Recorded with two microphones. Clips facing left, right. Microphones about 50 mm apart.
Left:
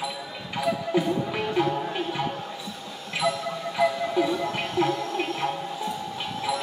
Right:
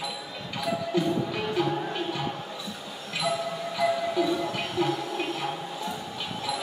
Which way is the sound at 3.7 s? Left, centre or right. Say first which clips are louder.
Left 2 dB; centre.